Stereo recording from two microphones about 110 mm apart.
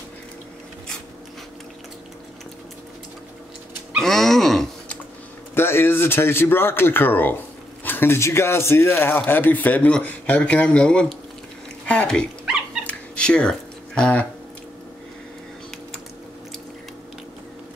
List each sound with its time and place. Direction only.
3.9 s groan: 5° left (ahead or behind)
5.5 s speech: 20° left (ahead or behind)
12.8 s cat: 10° left (ahead or behind)